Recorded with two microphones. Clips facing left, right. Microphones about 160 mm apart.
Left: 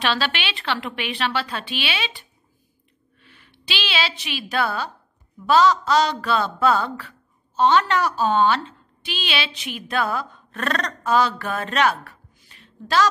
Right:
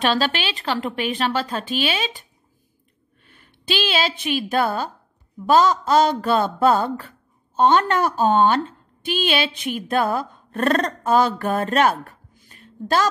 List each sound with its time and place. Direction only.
0.0 s a woman's voice: 40° right (ahead or behind)
3.3 s a woman's voice: 50° right (ahead or behind)